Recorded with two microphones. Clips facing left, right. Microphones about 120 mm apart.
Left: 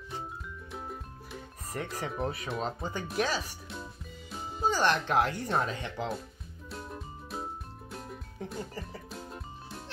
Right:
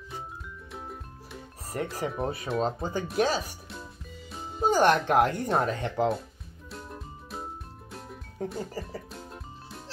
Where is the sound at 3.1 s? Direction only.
35° right (ahead or behind).